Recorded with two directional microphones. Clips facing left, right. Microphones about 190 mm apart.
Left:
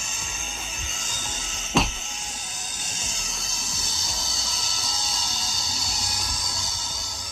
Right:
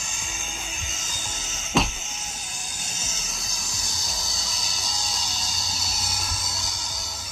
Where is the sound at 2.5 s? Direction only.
10° right (ahead or behind).